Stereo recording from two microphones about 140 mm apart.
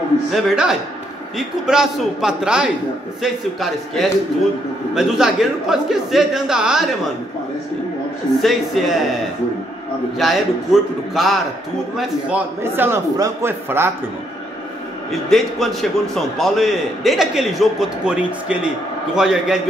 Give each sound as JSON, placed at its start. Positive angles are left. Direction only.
{"t": 0.3, "sound": "a man's voice", "side_deg": -5}
{"t": 8.4, "sound": "a man's voice", "side_deg": 0}
{"t": 10.1, "sound": "a man's voice", "side_deg": 0}
{"t": 15.0, "sound": "a man's voice", "side_deg": 0}